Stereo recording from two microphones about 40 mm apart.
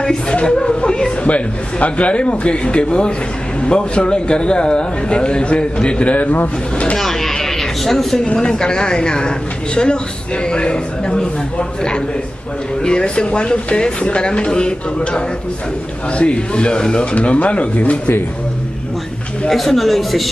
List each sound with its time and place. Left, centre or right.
0.0 s speech: centre
1.2 s speech: left
7.0 s a sound: centre
8.4 s speech: centre
16.2 s speech: left
19.5 s speech: centre